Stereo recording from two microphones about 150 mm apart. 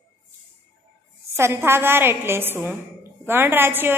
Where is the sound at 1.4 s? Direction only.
15° right (ahead or behind).